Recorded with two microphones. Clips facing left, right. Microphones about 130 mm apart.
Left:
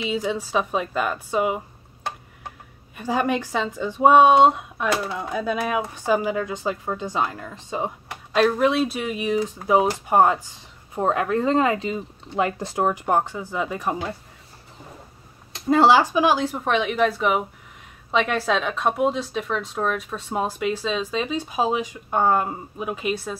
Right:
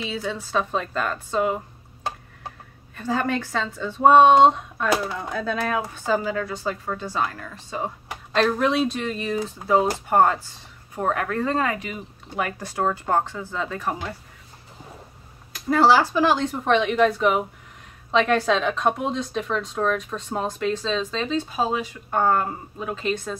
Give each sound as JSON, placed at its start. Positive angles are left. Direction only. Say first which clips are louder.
{"t": 0.1, "sound": "speech", "louder": "left 3 dB", "side_deg": 15}
{"t": 3.0, "sound": "speech", "louder": "left 2 dB", "side_deg": 15}
{"t": 8.3, "sound": "speech", "louder": "left 2 dB", "side_deg": 5}
{"t": 15.5, "sound": "speech", "louder": "left 1 dB", "side_deg": 20}